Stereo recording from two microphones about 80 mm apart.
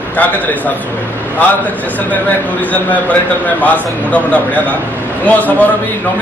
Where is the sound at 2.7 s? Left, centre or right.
Centre.